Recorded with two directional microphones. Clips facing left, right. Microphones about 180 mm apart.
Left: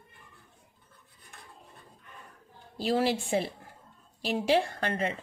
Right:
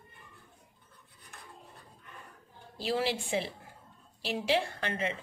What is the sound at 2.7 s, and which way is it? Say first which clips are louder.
A woman's voice: left 4 dB; 45° left (ahead or behind).